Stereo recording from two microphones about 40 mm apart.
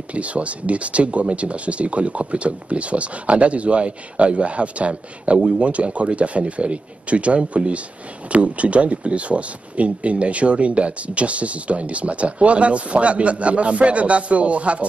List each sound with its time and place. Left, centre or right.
0.1 s speech: right